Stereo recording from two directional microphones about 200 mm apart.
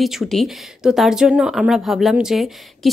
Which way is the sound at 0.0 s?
Centre (ahead or behind).